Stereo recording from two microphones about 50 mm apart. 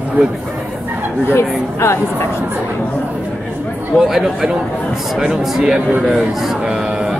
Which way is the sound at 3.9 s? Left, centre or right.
Centre.